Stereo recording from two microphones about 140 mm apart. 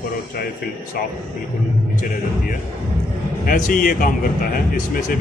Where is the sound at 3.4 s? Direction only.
80° left.